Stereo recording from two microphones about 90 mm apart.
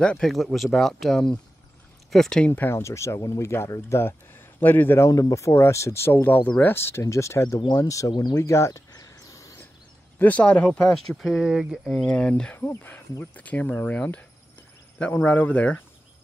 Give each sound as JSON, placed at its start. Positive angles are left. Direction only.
{"t": 0.0, "sound": "speech", "side_deg": 5}
{"t": 2.5, "sound": "speech", "side_deg": 25}
{"t": 4.6, "sound": "speech", "side_deg": 20}
{"t": 8.1, "sound": "speech", "side_deg": 55}
{"t": 8.4, "sound": "a sound", "side_deg": 35}
{"t": 10.1, "sound": "speech", "side_deg": 15}
{"t": 11.1, "sound": "speech", "side_deg": 0}
{"t": 11.4, "sound": "speech", "side_deg": -10}
{"t": 11.8, "sound": "speech", "side_deg": 10}
{"t": 15.2, "sound": "speech", "side_deg": 15}